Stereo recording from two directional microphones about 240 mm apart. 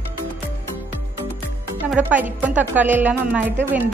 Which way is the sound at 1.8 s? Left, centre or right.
Centre.